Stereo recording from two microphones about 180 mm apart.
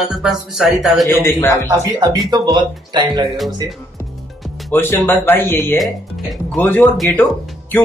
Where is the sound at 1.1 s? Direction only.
15° left (ahead or behind).